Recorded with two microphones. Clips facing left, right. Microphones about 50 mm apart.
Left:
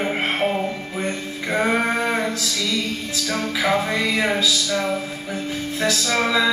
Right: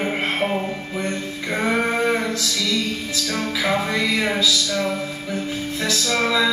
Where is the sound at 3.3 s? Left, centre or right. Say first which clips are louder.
Left 1 dB; left.